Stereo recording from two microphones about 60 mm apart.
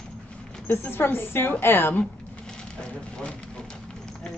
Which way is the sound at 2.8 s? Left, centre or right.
Centre.